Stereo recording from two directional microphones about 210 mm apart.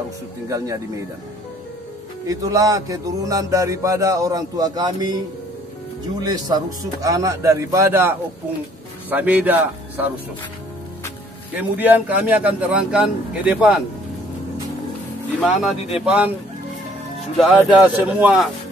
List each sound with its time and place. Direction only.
0.5 s speech: 15° right (ahead or behind)
2.2 s speech: 15° right (ahead or behind)
6.2 s speech: 20° right (ahead or behind)
11.5 s speech: 10° right (ahead or behind)
15.4 s speech: centre (ahead or behind)
17.4 s speech: centre (ahead or behind)